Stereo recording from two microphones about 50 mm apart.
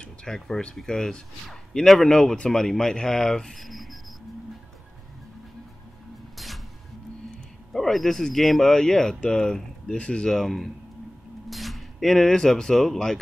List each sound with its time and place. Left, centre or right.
0.0 s a sound: centre
0.7 s speech: centre
6.3 s music: centre
7.7 s speech: centre
10.3 s speech: centre